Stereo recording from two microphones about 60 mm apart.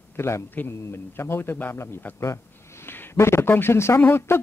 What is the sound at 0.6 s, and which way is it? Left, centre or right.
A man's voice, left.